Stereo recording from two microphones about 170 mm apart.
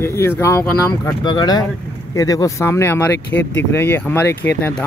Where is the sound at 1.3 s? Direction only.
25° left (ahead or behind).